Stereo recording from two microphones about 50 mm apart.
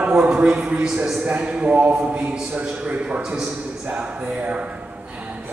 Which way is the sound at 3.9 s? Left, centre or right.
Right.